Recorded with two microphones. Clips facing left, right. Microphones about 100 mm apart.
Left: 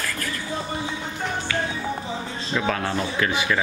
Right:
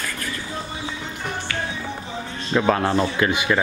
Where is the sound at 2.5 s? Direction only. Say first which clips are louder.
Right 6 dB; 35° right (ahead or behind).